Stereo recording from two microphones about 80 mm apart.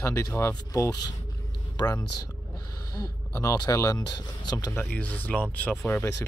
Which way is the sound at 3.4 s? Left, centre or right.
Left.